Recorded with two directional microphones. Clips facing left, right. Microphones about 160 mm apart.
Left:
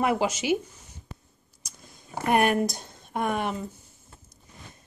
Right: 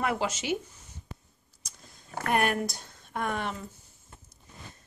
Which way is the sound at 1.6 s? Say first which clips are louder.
Left 3 dB; 15° left (ahead or behind).